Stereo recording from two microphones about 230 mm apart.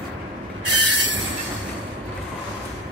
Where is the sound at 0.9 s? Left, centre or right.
Right.